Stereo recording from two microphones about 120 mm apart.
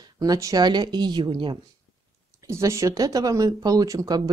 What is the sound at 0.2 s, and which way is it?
Speech, 30° right (ahead or behind).